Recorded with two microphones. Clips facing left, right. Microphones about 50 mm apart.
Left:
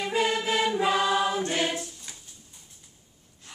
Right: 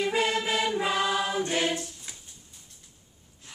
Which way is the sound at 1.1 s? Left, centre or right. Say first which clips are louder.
Left 3 dB; centre.